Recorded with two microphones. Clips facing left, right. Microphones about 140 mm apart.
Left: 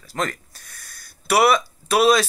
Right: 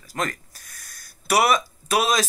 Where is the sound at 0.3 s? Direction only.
40° right (ahead or behind).